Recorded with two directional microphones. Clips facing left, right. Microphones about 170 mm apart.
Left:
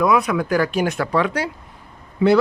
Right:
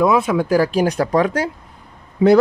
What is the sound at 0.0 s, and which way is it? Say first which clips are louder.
Speech: right 2 dB; 25° right (ahead or behind).